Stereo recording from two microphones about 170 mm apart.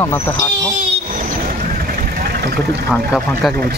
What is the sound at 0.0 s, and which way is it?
Speech, 20° left (ahead or behind).